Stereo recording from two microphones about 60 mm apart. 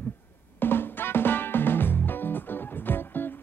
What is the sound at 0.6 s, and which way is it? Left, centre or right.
Music, left.